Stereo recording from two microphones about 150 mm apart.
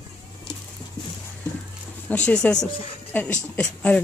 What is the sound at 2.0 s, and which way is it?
A woman's voice, 5° left (ahead or behind).